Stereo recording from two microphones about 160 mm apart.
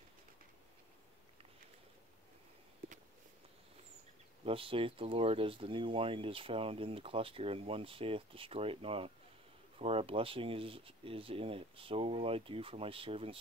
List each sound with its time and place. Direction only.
4.5 s speech: 35° right (ahead or behind)